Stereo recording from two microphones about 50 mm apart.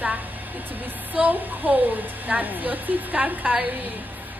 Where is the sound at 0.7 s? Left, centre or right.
Right.